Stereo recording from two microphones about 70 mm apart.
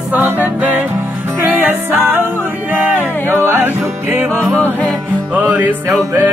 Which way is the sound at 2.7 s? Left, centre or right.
Right.